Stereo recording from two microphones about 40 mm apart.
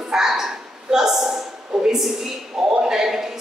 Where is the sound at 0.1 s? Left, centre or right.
Centre.